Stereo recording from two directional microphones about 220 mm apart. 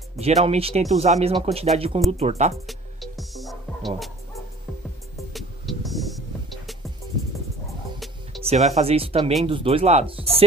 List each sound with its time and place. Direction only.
0.2 s speech: 30° right (ahead or behind)
2.6 s music: centre (ahead or behind)
5.3 s music: centre (ahead or behind)
8.4 s speech: 30° right (ahead or behind)